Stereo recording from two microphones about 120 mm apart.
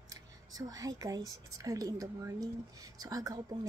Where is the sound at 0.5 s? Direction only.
30° right (ahead or behind).